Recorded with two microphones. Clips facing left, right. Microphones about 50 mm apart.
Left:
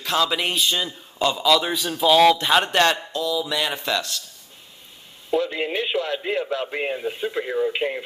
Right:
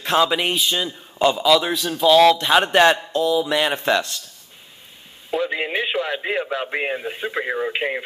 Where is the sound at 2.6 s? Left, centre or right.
Centre.